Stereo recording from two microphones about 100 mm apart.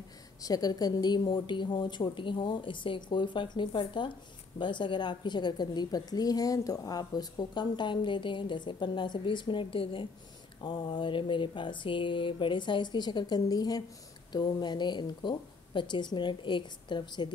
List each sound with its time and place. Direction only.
0.4 s a woman's voice: 40° left (ahead or behind)